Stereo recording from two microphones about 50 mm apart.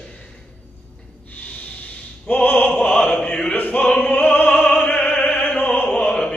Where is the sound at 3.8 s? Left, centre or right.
Left.